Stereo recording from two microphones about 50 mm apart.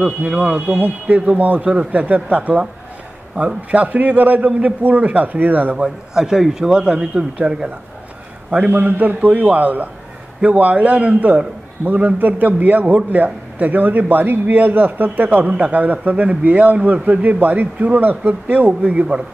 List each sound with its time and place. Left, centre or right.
0.0 s a man's voice: right
5.8 s a man's voice: centre